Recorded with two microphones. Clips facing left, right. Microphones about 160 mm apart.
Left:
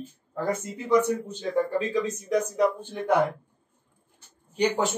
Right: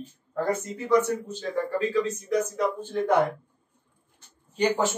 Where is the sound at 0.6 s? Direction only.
15° left (ahead or behind).